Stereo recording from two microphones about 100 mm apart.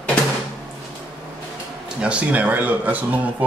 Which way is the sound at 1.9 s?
10° right (ahead or behind).